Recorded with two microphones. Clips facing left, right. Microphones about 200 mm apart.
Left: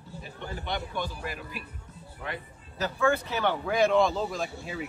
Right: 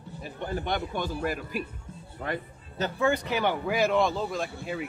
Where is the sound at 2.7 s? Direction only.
25° right (ahead or behind).